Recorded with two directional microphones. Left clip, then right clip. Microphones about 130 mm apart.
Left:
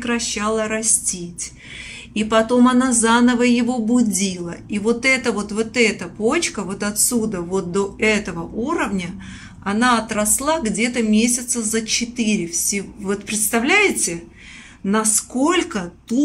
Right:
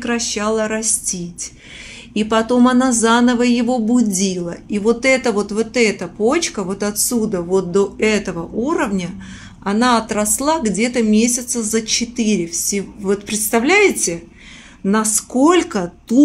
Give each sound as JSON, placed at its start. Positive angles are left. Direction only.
{"t": 0.3, "sound": "speech", "side_deg": -30}
{"t": 2.1, "sound": "speech", "side_deg": -40}
{"t": 3.9, "sound": "a woman's voice", "side_deg": -25}
{"t": 4.8, "sound": "speech", "side_deg": -50}
{"t": 5.5, "sound": "a woman's voice", "side_deg": -20}
{"t": 7.7, "sound": "speech", "side_deg": -45}
{"t": 8.3, "sound": "a woman's voice", "side_deg": -25}
{"t": 14.9, "sound": "speech", "side_deg": -45}
{"t": 15.4, "sound": "a woman's voice", "side_deg": -30}